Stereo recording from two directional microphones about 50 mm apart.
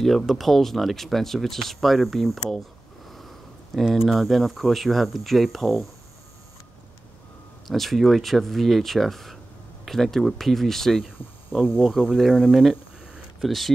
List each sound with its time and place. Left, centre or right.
0.0 s speech: centre
3.1 s a sound: centre
4.0 s speech: centre
7.6 s speech: centre
11.1 s speech: centre
12.3 s a sound: centre
13.4 s speech: centre